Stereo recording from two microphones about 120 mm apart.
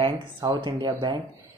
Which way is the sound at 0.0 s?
40° right (ahead or behind).